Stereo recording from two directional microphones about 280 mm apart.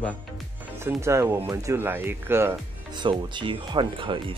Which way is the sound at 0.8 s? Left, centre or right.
Centre.